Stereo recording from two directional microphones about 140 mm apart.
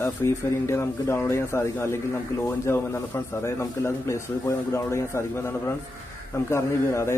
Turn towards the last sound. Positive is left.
turn(degrees=20)  # may be behind; listen again after turning